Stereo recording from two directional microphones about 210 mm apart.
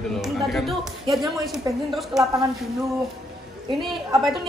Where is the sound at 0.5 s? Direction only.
Centre (ahead or behind).